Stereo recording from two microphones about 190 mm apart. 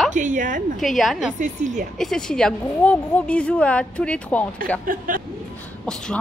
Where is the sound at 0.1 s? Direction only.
40° right (ahead or behind).